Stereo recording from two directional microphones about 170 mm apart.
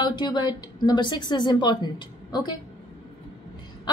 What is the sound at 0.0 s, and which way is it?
A woman's voice, 25° left (ahead or behind).